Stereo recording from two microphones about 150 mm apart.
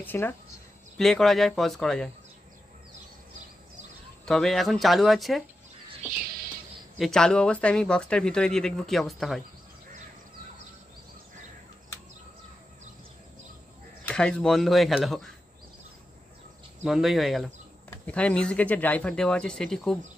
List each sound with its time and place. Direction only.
0.0 s speech: 15° left (ahead or behind)
0.9 s speech: centre (ahead or behind)
4.3 s speech: centre (ahead or behind)
6.0 s music: 80° right
7.0 s speech: 5° left (ahead or behind)
14.0 s speech: 5° left (ahead or behind)
16.8 s speech: centre (ahead or behind)